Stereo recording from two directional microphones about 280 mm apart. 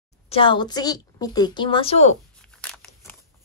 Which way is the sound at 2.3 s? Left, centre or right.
Centre.